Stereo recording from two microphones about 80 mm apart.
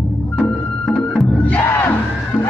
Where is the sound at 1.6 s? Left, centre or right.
Left.